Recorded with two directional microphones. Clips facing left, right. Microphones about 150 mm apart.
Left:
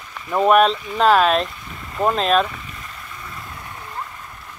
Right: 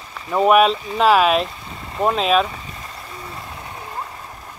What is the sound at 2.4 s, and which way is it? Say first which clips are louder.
Vehicle: right 1 dB; 30° right (ahead or behind).